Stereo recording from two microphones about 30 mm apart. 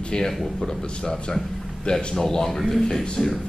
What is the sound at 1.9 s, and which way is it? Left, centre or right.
Speech, left.